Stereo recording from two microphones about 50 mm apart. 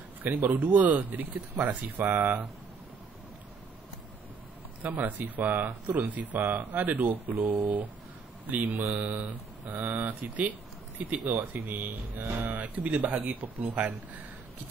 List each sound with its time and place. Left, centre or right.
0.2 s speech: right
4.9 s speech: right
8.7 s speech: right
9.0 s speech: right
11.5 s speech: right
12.4 s speech: right